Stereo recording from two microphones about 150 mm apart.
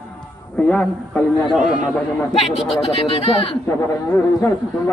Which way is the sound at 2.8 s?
40° left (ahead or behind).